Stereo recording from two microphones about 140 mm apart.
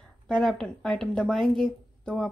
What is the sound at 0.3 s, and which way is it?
Speech, 5° left (ahead or behind).